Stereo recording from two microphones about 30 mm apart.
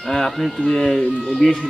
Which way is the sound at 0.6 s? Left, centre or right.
Centre.